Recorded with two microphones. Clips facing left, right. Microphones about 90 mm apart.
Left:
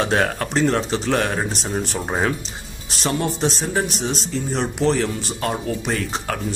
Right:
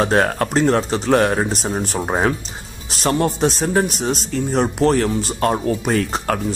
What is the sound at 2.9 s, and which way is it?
Speech, 45° right (ahead or behind).